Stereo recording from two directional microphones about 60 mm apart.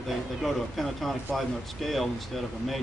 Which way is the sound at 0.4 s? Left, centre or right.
Centre.